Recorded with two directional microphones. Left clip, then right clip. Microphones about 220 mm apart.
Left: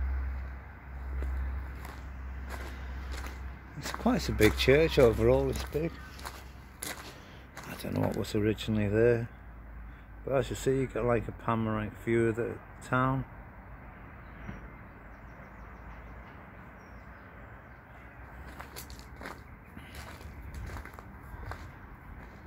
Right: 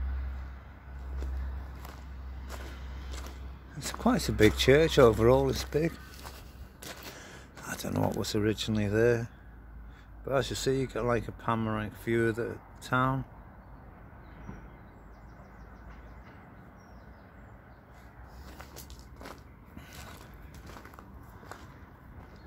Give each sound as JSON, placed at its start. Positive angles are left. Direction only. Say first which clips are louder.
{"t": 4.0, "sound": "speech", "louder": "right 2 dB", "side_deg": -15}
{"t": 7.7, "sound": "a sound", "louder": "right 2 dB", "side_deg": -15}
{"t": 8.2, "sound": "speech", "louder": "right 1 dB", "side_deg": -10}